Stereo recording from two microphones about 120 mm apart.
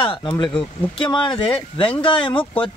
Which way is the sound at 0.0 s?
45° left (ahead or behind).